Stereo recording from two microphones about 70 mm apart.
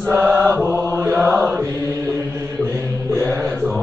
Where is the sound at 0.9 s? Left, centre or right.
Right.